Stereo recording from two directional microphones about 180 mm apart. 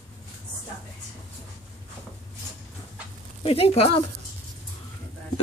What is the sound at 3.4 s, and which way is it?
Speech, 35° left (ahead or behind).